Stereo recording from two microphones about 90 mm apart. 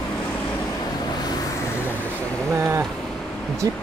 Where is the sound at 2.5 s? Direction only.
30° right (ahead or behind).